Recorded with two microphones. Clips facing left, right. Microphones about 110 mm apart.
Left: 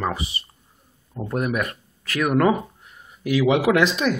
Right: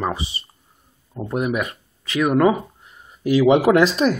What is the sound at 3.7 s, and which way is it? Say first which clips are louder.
Speech: right 2 dB; 25° right (ahead or behind).